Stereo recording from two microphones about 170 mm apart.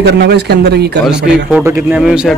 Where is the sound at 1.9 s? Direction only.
5° right (ahead or behind).